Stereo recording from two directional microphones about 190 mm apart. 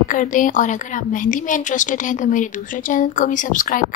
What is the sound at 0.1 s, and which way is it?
A woman's voice, 45° left (ahead or behind).